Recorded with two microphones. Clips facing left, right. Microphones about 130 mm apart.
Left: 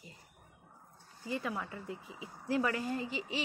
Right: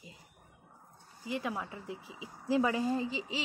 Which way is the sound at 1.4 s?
15° right (ahead or behind).